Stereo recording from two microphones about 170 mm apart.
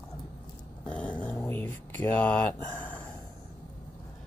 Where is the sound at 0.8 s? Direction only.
10° left (ahead or behind).